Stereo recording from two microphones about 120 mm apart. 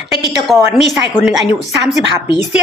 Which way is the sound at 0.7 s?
Centre (ahead or behind).